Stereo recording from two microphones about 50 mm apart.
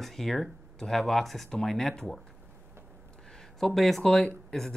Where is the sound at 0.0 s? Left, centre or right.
Centre.